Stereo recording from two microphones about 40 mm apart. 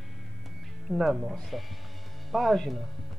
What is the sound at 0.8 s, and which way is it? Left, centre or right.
Speech, centre.